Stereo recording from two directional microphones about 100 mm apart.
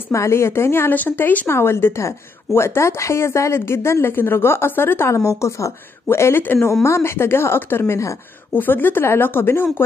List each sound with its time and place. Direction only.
0.1 s speech: 30° left (ahead or behind)